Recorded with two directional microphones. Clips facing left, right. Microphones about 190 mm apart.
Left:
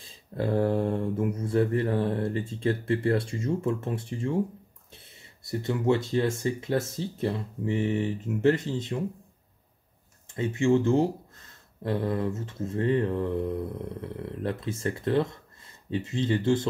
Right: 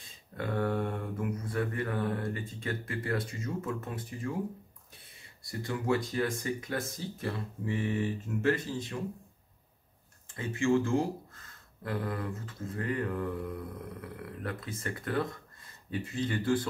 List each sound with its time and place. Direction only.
0.0 s speech: 30° left (ahead or behind)
10.3 s speech: 20° left (ahead or behind)